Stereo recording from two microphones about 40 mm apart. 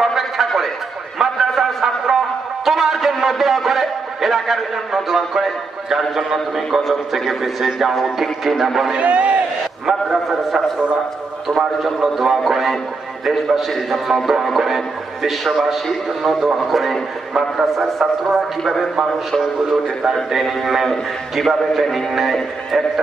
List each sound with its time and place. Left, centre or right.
0.0 s a sound: centre
1.6 s music: centre
2.6 s a man's voice: centre
9.0 s a man's voice: right
9.8 s a man's voice: centre
11.8 s a man's voice: centre
19.7 s a man's voice: centre